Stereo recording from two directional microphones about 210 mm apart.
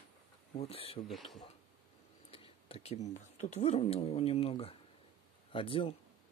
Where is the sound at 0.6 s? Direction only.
30° left (ahead or behind).